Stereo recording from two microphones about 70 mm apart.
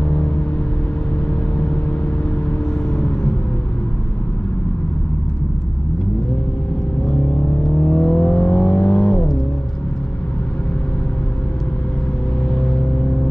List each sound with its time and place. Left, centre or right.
7.8 s vehicle: centre